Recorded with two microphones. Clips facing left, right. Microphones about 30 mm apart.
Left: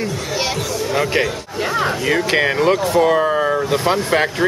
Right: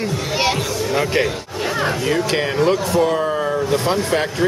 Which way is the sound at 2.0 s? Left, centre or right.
Centre.